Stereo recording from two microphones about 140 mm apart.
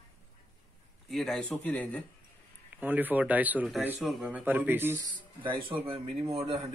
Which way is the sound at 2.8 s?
10° right (ahead or behind).